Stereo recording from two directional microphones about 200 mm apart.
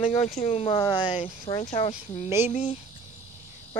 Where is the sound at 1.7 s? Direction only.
30° left (ahead or behind).